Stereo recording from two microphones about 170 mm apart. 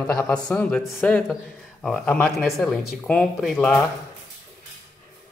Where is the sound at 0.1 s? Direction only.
5° left (ahead or behind).